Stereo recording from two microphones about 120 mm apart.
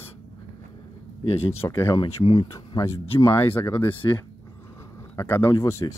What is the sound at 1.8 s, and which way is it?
Speech, 40° left (ahead or behind).